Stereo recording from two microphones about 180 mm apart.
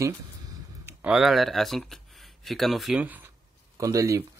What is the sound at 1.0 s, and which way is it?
Speech, centre (ahead or behind).